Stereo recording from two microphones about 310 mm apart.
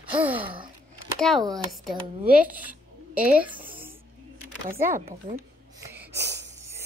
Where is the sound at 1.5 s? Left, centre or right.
Centre.